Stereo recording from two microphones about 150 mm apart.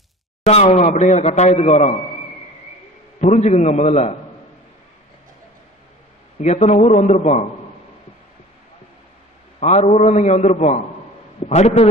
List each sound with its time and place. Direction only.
0.5 s a man's voice: 45° left (ahead or behind)
3.2 s a man's voice: 45° left (ahead or behind)
6.4 s a man's voice: 50° left (ahead or behind)
9.6 s a man's voice: 50° left (ahead or behind)